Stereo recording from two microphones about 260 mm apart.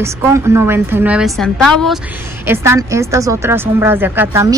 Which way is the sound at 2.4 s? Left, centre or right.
Centre.